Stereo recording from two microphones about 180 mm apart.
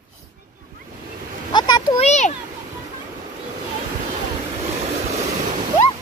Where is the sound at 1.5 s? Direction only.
25° left (ahead or behind).